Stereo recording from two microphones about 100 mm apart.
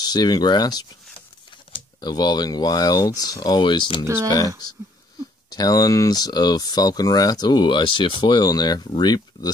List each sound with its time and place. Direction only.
0.0 s speech: 40° left (ahead or behind)
2.0 s speech: 45° left (ahead or behind)
4.0 s speech: 25° right (ahead or behind)
5.5 s speech: 40° left (ahead or behind)